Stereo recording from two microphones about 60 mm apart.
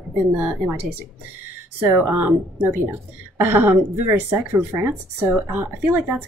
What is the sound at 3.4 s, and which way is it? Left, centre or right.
A woman's voice, right.